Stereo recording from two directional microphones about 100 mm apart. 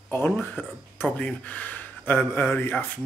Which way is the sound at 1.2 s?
15° left (ahead or behind).